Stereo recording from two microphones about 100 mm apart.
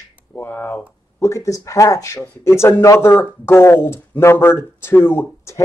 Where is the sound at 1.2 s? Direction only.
30° left (ahead or behind).